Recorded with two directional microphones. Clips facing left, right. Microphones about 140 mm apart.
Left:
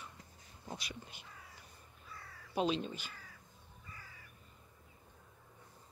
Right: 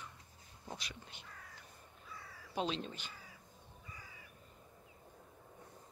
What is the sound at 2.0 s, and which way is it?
Crow, centre (ahead or behind).